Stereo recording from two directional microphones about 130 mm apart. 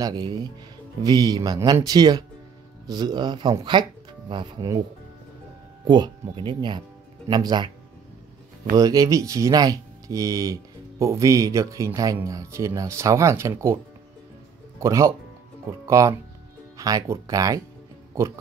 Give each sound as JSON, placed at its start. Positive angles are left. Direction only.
{"t": 0.0, "sound": "speech", "side_deg": -30}
{"t": 5.9, "sound": "speech", "side_deg": -35}
{"t": 8.7, "sound": "speech", "side_deg": -30}
{"t": 14.8, "sound": "speech", "side_deg": -20}